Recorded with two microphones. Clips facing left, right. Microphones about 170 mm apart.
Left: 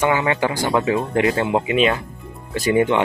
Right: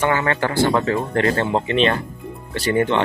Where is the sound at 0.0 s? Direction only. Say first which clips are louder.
Left 1 dB; 15° left (ahead or behind).